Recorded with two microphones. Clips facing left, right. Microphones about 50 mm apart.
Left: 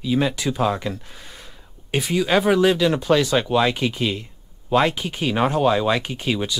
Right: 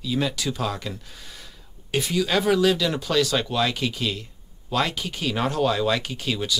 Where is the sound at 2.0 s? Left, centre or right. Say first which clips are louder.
Left 4 dB; left.